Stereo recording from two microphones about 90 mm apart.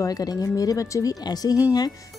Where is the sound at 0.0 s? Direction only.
45° left (ahead or behind).